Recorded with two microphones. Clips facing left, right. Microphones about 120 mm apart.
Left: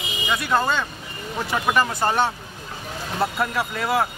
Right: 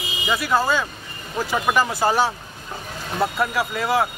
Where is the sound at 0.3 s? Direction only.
5° right (ahead or behind).